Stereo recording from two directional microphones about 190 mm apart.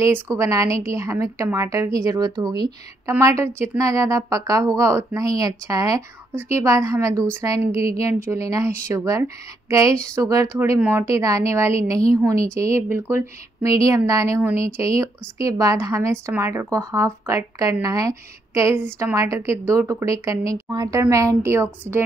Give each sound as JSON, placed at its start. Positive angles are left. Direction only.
{"t": 0.0, "sound": "a woman's voice", "side_deg": -15}